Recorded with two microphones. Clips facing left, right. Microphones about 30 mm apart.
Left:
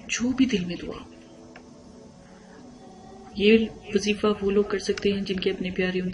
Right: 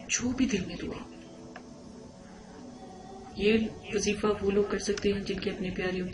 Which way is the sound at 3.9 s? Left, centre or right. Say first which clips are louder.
Left 5 dB; left.